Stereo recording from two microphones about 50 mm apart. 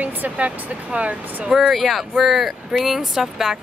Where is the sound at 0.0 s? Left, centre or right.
Right.